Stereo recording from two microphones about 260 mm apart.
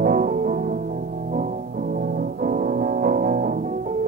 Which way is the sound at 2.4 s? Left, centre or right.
Right.